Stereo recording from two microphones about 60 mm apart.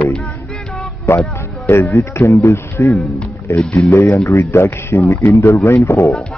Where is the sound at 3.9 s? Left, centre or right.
Left.